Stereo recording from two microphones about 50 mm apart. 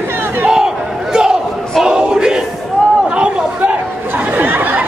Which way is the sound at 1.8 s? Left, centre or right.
Centre.